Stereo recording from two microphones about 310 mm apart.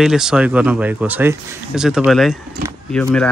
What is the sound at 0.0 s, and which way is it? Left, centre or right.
Speech, centre.